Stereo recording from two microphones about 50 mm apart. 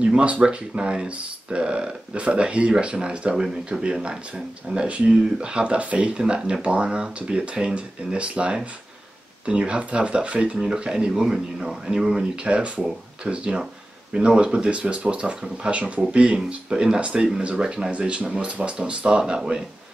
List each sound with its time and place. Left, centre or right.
0.0 s speech: right